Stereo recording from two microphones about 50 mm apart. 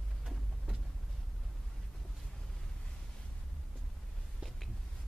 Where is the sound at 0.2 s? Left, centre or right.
Centre.